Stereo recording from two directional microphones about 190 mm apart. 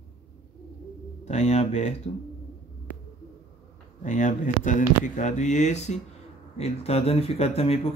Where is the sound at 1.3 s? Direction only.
35° left (ahead or behind).